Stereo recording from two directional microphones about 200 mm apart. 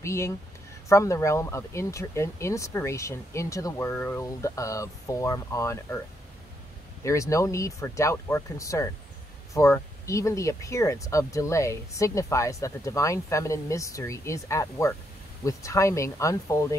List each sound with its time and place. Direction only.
0.0 s speech: 15° left (ahead or behind)
7.1 s speech: 15° left (ahead or behind)